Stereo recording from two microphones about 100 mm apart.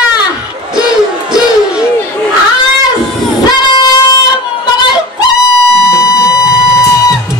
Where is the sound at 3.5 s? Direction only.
40° left (ahead or behind).